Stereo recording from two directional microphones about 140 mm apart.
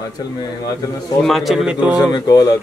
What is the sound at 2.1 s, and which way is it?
Speech, 30° left (ahead or behind).